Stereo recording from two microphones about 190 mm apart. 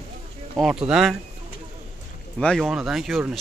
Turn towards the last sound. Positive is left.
turn(degrees=0)  # may be behind; listen again after turning